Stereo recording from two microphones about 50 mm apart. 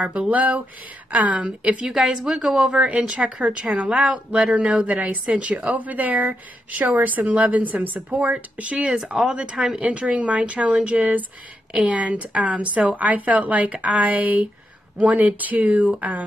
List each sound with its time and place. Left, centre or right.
0.0 s speech: right
1.9 s a woman's voice: centre
2.8 s speech: right
8.9 s speech: centre; by 16.3 s right